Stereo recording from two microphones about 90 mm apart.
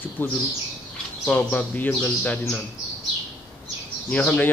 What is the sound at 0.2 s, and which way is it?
Speech, 25° left (ahead or behind).